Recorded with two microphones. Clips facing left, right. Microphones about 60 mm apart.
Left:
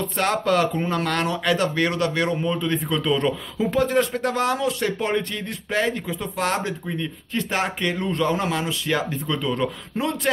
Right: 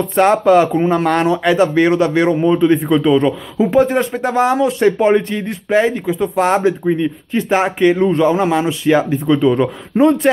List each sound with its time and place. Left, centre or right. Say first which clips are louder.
0.1 s speech: right 11 dB; right
3.7 s speech: right 6 dB; right
9.9 s speech: right 13 dB; right